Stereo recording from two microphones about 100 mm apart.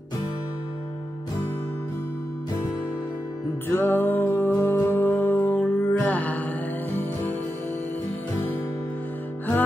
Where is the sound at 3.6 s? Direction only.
20° left (ahead or behind).